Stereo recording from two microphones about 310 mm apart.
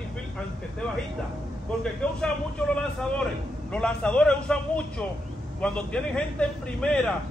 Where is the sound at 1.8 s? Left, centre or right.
Centre.